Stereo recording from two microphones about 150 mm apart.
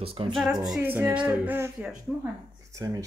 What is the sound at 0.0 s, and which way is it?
Speech, 40° right (ahead or behind).